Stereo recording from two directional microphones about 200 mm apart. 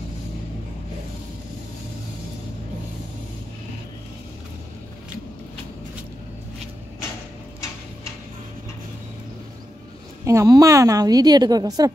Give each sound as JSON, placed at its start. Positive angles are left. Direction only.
{"t": 10.2, "sound": "a woman's voice", "side_deg": -15}